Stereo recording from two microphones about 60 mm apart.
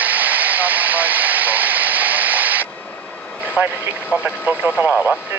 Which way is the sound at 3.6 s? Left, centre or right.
Right.